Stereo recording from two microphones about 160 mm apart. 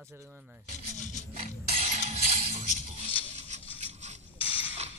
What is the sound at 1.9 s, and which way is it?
Music, 45° right (ahead or behind).